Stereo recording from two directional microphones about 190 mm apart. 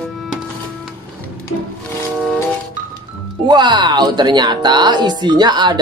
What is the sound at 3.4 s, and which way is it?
Speech, 25° right (ahead or behind).